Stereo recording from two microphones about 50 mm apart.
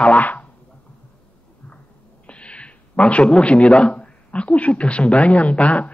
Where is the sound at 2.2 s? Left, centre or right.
Left.